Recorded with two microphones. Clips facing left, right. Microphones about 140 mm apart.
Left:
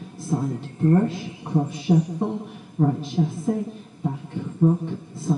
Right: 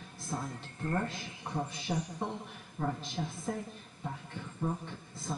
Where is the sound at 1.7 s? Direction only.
5° left (ahead or behind).